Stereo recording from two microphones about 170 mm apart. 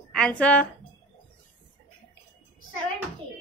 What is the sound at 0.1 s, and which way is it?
Speech, 5° left (ahead or behind).